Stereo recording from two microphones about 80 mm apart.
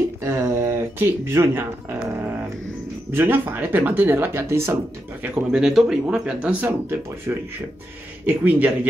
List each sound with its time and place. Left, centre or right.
0.4 s a sound: right
3.1 s speech: right
5.3 s speech: centre
7.3 s speech: right
8.3 s speech: right